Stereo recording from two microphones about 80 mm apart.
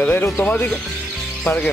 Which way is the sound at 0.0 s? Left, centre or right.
Left.